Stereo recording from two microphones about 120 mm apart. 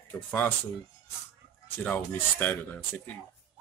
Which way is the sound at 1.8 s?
15° left (ahead or behind).